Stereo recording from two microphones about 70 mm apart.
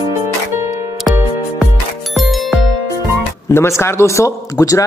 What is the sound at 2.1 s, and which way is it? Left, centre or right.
Music, centre.